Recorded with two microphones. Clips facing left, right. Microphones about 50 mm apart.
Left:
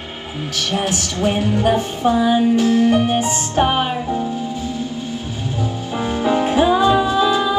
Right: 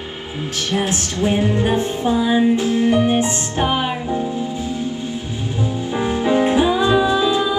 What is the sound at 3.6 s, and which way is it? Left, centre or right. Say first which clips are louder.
Music: left 3 dB; left.